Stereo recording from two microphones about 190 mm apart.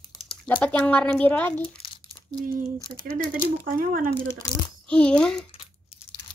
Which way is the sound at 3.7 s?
45° right (ahead or behind).